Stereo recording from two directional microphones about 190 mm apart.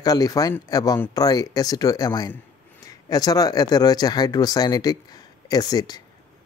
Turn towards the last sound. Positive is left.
turn(degrees=20)  # may be behind; listen again after turning